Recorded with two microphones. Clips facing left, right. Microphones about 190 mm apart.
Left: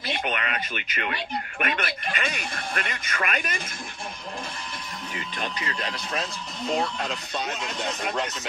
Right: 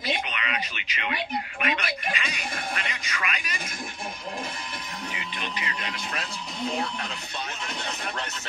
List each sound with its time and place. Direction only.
0.2 s a sound: 50° left (ahead or behind)
1.6 s a man's voice: 50° left (ahead or behind)
5.1 s speech: 40° left (ahead or behind)